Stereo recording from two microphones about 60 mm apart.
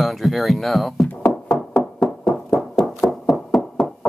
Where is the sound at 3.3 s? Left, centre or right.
Centre.